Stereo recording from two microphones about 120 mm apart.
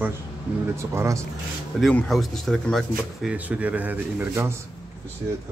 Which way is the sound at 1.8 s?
5° left (ahead or behind).